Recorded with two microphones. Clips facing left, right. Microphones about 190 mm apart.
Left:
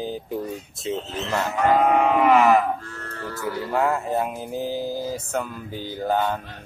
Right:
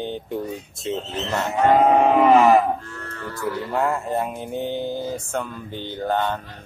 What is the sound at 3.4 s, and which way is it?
Speech, centre (ahead or behind).